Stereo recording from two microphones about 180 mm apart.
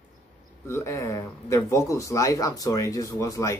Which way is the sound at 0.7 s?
15° left (ahead or behind).